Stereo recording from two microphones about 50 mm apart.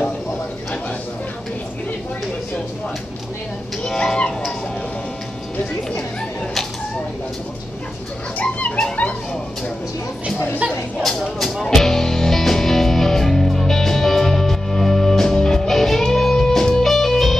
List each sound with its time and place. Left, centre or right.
3.8 s a sound: centre
8.4 s music: left
11.3 s music: centre